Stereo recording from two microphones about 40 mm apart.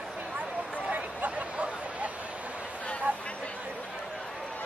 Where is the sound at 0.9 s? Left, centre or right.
Right.